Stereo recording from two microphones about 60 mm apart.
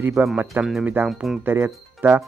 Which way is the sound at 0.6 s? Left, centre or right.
Centre.